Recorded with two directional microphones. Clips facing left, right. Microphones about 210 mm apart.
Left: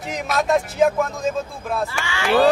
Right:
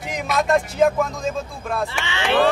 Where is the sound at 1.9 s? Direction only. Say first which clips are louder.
Even; 20° right (ahead or behind).